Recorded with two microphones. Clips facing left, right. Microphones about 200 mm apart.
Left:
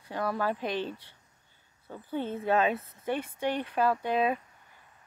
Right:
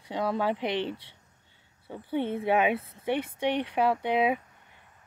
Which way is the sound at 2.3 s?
10° right (ahead or behind).